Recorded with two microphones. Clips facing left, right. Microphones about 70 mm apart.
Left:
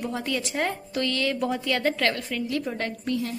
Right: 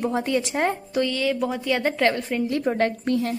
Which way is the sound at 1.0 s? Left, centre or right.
Centre.